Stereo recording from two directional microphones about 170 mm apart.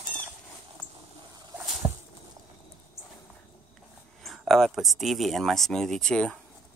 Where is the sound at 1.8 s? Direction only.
15° right (ahead or behind).